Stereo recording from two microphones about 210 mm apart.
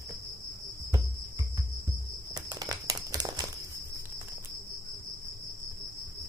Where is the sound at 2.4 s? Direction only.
20° right (ahead or behind).